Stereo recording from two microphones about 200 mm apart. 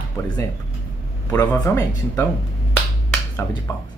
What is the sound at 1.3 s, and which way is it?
Speech, 10° left (ahead or behind).